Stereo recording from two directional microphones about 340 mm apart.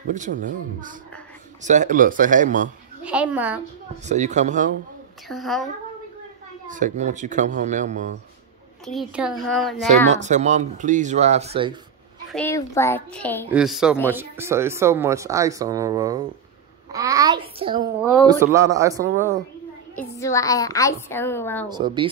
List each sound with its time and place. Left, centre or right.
0.1 s speech: right
3.0 s speech: centre
4.0 s speech: right
5.3 s speech: centre
6.7 s speech: right
8.8 s speech: centre
9.8 s speech: centre
12.3 s a child's voice: centre
20.2 s a woman's voice: centre
21.6 s a child's voice: centre